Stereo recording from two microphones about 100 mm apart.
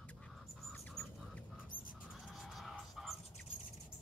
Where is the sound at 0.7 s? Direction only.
15° left (ahead or behind).